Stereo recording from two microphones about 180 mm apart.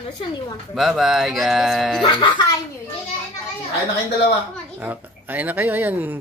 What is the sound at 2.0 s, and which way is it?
Speech, 25° left (ahead or behind).